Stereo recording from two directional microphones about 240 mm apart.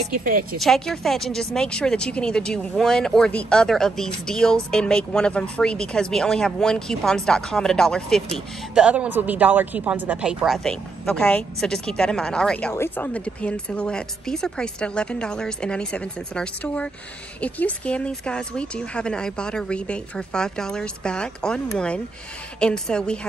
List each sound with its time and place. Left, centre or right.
0.1 s a woman's voice: right
0.6 s a woman's voice: centre